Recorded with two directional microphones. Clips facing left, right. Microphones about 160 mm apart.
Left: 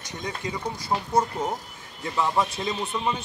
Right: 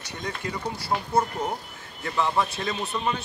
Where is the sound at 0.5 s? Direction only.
15° left (ahead or behind).